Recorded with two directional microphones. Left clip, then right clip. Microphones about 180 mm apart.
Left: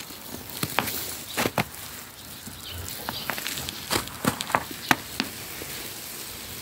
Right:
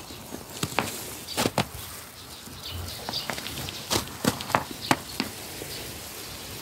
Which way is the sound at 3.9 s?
5° right (ahead or behind).